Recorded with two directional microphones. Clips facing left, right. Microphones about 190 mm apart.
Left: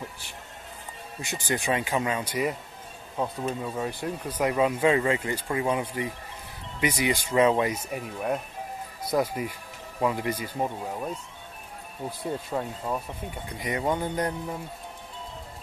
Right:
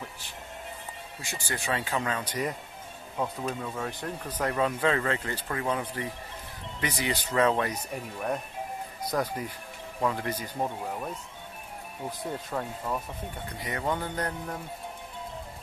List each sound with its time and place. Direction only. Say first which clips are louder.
1.2 s speech: left 6 dB; 20° left (ahead or behind)
12.4 s speech: left 2 dB; 15° left (ahead or behind)